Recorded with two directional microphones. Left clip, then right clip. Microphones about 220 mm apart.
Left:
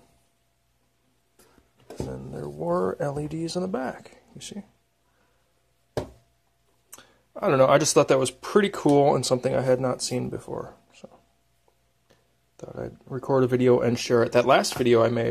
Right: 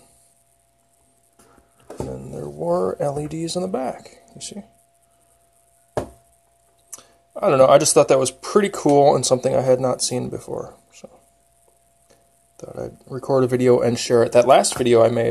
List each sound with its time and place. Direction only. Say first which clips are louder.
2.0 s speech: right 4 dB; 15° left (ahead or behind)
6.9 s speech: right 6 dB; 15° left (ahead or behind)
12.5 s speech: right 4 dB; 20° left (ahead or behind)